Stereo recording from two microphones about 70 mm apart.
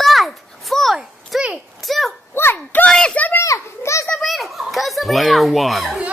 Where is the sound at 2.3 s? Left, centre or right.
Left.